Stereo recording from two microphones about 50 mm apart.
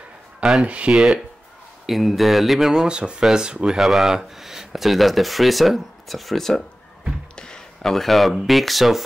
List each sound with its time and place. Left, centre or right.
0.4 s a sound: centre
0.7 s speech: right
1.9 s speech: centre
3.0 s speech: centre
7.3 s a sound: centre
7.8 s speech: centre